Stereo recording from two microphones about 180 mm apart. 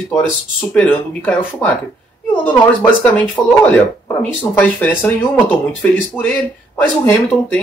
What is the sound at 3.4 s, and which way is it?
Speech, 20° left (ahead or behind).